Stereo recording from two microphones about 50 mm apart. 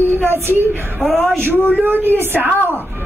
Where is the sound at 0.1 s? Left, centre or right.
Right.